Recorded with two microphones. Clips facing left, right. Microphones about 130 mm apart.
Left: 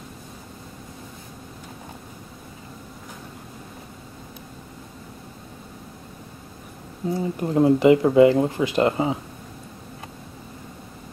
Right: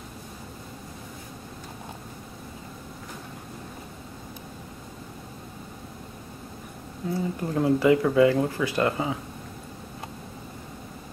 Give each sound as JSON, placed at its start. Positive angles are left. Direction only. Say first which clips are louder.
{"t": 7.2, "sound": "speech", "louder": "left 6 dB", "side_deg": 20}